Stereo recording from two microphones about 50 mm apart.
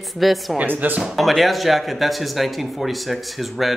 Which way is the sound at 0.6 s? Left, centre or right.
Right.